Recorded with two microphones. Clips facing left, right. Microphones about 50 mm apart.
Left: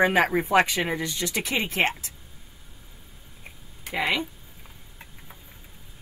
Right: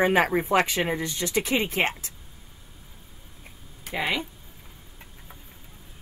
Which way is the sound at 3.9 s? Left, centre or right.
Left.